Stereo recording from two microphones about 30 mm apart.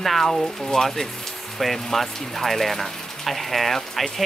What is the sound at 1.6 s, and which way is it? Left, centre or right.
Speech, centre.